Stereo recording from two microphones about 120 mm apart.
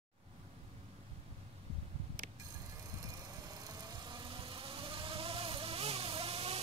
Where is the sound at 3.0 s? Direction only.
30° right (ahead or behind).